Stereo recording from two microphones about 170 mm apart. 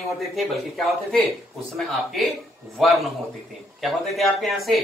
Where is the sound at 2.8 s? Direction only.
Centre (ahead or behind).